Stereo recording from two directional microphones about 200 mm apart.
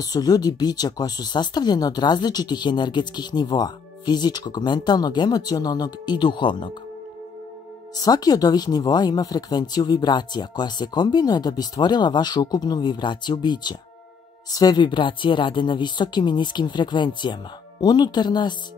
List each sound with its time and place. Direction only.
0.0 s speech: 20° left (ahead or behind)
7.9 s speech: 20° left (ahead or behind)